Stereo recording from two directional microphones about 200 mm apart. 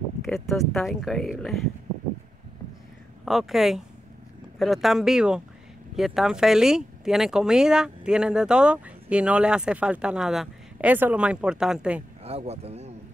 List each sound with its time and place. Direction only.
0.2 s speech: centre (ahead or behind)
3.3 s speech: centre (ahead or behind)
12.2 s speech: 30° right (ahead or behind)